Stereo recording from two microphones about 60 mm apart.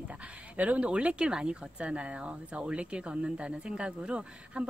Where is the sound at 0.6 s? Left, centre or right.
Right.